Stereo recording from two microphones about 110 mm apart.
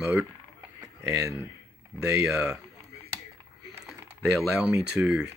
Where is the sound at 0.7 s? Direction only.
30° right (ahead or behind).